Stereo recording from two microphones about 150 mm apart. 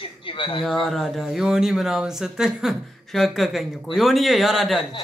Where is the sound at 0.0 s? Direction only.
35° left (ahead or behind).